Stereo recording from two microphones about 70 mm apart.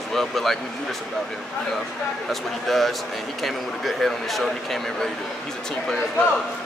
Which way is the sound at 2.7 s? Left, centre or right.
Centre.